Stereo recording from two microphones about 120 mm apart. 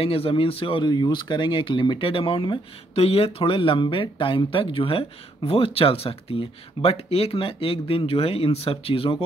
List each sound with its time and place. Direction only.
0.0 s speech: 50° left (ahead or behind)
2.9 s speech: 55° left (ahead or behind)